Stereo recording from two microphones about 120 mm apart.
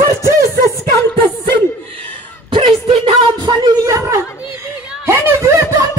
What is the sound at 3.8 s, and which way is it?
Speech, 25° right (ahead or behind).